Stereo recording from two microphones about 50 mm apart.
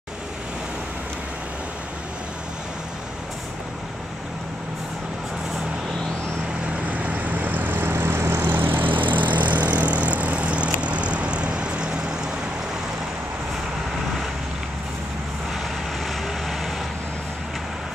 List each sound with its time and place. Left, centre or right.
6.9 s vehicle: right
16.1 s vehicle: centre